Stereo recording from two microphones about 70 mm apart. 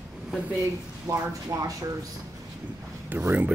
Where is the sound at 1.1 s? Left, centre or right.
Right.